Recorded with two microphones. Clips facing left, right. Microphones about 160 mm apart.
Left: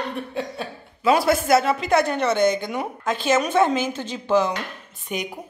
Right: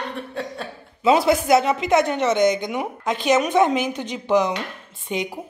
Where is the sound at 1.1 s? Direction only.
20° right (ahead or behind).